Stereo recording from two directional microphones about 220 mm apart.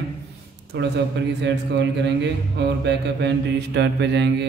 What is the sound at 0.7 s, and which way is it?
Mantra, 50° right (ahead or behind).